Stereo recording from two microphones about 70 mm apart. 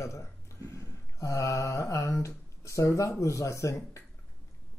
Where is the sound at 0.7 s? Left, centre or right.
Left.